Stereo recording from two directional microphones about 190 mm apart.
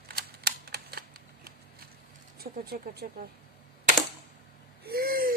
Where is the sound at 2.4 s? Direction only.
55° right (ahead or behind).